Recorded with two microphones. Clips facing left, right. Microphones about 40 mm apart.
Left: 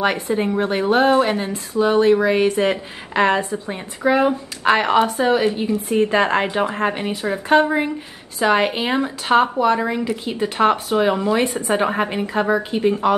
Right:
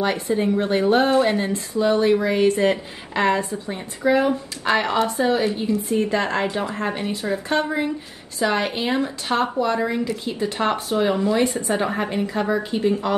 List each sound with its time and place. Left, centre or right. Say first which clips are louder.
0.0 s a woman's voice: left 2 dB; left
1.1 s a woman's voice: left 1 dB; left
9.0 s a woman's voice: left 6 dB; left